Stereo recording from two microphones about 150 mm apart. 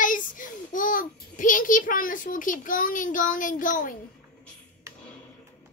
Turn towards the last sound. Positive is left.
turn(degrees=65)  # may be behind; listen again after turning